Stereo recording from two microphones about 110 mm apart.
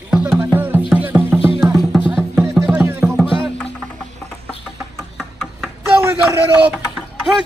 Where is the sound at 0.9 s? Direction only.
15° right (ahead or behind).